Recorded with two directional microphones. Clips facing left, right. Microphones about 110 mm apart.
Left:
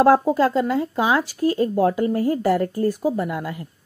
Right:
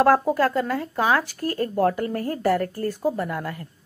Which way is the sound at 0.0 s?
20° left (ahead or behind).